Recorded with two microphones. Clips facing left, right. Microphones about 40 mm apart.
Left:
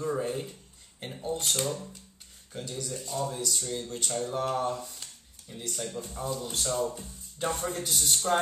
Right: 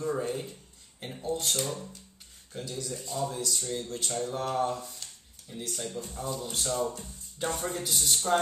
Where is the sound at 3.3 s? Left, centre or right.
Centre.